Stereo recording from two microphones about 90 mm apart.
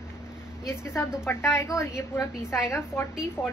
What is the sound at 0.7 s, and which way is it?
A woman's voice, 30° left (ahead or behind).